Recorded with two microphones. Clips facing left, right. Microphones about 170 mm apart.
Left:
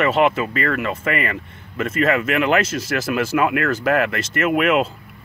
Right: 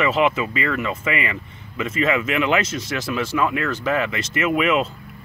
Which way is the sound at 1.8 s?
Centre (ahead or behind).